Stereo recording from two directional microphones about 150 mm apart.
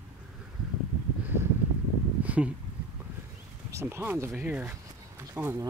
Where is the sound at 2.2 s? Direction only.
10° right (ahead or behind).